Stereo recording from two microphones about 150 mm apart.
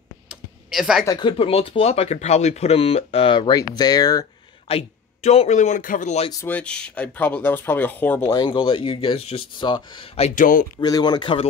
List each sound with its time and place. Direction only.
0.7 s speech: centre (ahead or behind)
1.0 s speech: 30° left (ahead or behind)
4.6 s speech: 45° left (ahead or behind)
6.4 s speech: 10° left (ahead or behind)
8.3 s speech: 30° left (ahead or behind)
10.3 s speech: 65° left (ahead or behind)
10.8 s speech: 30° left (ahead or behind)